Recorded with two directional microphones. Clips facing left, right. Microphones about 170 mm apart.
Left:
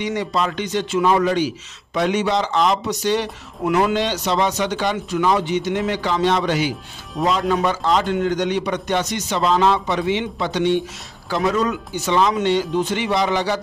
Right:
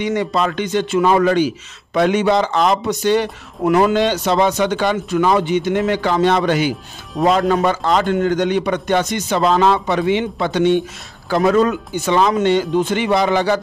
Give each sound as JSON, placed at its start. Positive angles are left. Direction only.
{"t": 0.0, "sound": "a man's voice", "side_deg": -55}